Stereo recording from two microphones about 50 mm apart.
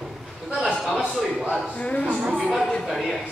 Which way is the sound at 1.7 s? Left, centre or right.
Left.